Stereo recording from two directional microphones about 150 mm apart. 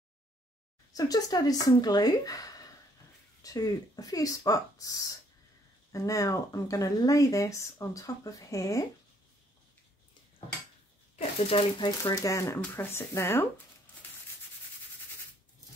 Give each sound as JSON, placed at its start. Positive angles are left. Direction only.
{"t": 0.9, "sound": "speech", "side_deg": 25}
{"t": 11.1, "sound": "speech", "side_deg": 45}
{"t": 12.0, "sound": "speech", "side_deg": 20}